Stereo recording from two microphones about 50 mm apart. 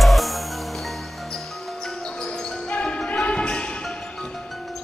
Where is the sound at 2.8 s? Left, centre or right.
Left.